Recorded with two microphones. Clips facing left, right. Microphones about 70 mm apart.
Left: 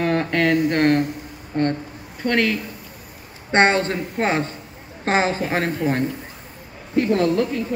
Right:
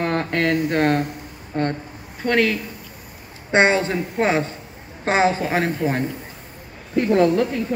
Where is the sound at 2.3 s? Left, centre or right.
Centre.